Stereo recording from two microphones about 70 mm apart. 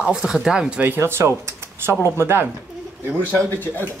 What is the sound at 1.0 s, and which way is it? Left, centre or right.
Speech, right.